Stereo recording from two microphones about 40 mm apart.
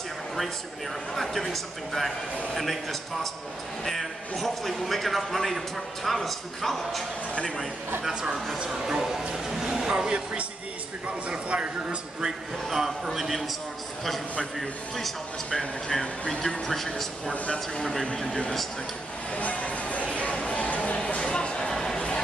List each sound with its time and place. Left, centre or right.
1.1 s a man's voice: centre
8.1 s speech: right
11.2 s speech: right
12.6 s a man's voice: centre
14.6 s a man's voice: centre
18.2 s speech: left
19.3 s speech: left
21.0 s a sound: left